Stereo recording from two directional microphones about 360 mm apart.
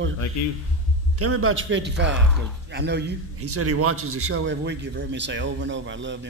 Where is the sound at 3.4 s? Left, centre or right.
Right.